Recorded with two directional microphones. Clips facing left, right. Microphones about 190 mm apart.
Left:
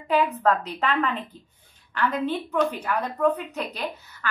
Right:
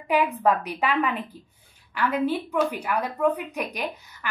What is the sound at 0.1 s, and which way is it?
A woman's voice, 10° right (ahead or behind).